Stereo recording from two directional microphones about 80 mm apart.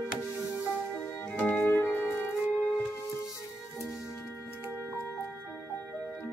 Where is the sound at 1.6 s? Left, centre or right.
Left.